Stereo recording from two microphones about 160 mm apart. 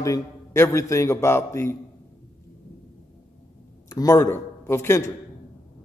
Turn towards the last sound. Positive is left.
turn(degrees=15)  # may be behind; listen again after turning